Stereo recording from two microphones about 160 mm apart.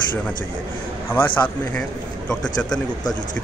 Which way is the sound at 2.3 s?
5° left (ahead or behind).